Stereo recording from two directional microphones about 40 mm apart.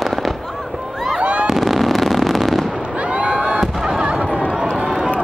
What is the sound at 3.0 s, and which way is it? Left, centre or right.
Fireworks, right.